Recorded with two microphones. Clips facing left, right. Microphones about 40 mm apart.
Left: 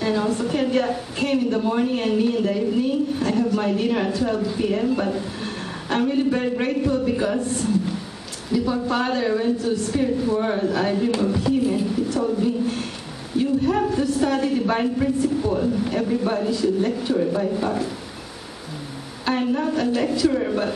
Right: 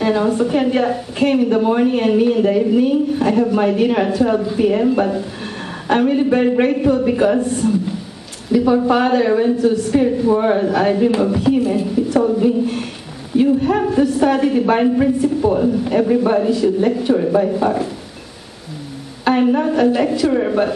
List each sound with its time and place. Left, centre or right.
0.0 s a woman's voice: centre
5.9 s speech: right
7.5 s a man's voice: centre
8.5 s speech: right
11.6 s a woman's voice: centre
12.1 s a woman's voice: right
19.2 s speech: right